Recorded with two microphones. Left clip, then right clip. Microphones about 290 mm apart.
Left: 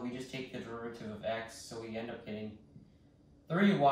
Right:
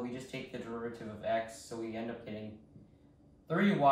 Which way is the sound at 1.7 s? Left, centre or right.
Centre.